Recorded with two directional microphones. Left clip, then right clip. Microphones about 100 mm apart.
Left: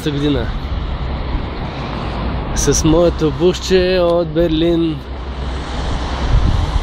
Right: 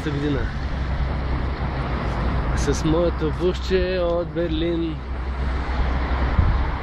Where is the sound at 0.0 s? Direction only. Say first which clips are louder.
Left 7 dB; 35° left (ahead or behind).